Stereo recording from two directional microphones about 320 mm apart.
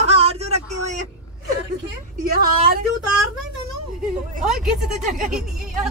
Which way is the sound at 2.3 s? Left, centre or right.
Right.